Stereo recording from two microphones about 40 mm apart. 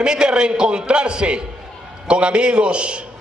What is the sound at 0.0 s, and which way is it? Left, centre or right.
A man's voice, right.